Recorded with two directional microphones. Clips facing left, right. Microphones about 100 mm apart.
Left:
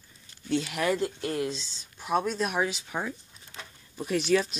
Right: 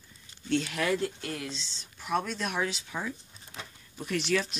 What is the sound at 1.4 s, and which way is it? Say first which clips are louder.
Speech: left 6 dB; 15° left (ahead or behind).